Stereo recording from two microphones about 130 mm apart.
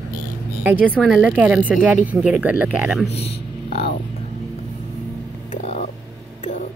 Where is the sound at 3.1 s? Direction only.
50° left (ahead or behind).